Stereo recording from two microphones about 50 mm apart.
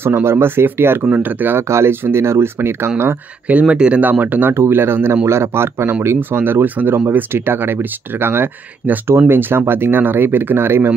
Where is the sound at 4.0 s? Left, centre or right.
Right.